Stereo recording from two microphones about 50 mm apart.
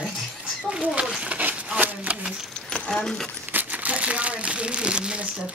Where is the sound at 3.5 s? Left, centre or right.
Right.